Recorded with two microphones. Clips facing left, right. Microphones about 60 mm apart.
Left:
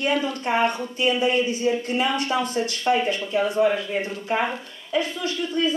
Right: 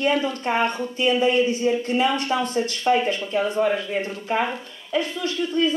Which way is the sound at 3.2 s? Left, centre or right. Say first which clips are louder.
Left 1 dB; centre.